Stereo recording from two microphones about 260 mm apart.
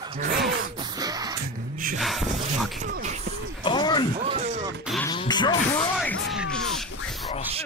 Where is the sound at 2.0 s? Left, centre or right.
Centre.